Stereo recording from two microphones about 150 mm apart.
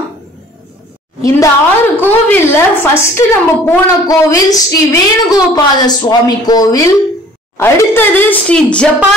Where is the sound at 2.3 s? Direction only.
15° left (ahead or behind).